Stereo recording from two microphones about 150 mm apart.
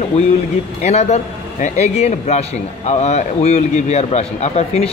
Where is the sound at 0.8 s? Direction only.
45° left (ahead or behind).